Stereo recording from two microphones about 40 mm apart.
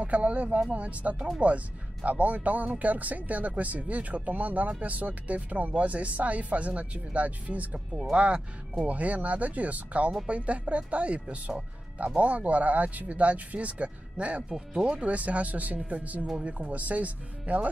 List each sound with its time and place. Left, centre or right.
0.0 s speech: right
7.9 s speech: right